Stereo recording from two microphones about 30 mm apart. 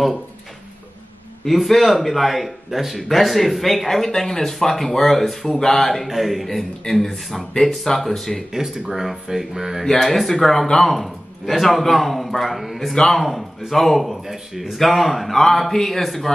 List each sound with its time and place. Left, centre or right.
1.4 s a man's voice: centre
7.6 s speech: centre
8.5 s speech: centre
9.9 s a man's voice: centre
14.2 s speech: centre
14.8 s a man's voice: centre